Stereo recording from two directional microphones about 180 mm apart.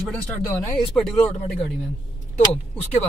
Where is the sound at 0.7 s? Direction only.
Centre (ahead or behind).